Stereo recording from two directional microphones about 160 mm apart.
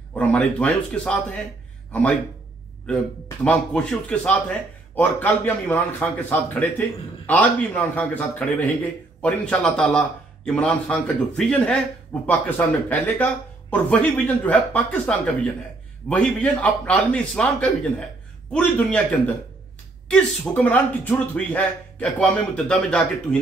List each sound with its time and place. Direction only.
0.1 s a man's voice: 10° left (ahead or behind)
3.4 s a man's voice: 10° left (ahead or behind)